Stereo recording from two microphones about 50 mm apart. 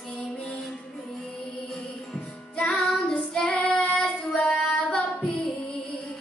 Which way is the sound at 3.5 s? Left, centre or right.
Left.